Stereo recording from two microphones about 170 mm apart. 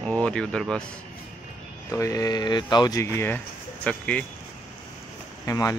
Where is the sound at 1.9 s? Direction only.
20° left (ahead or behind).